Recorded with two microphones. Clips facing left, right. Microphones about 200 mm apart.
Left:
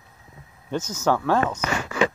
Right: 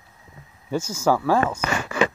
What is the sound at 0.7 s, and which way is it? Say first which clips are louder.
Speech: right 2 dB; 10° right (ahead or behind).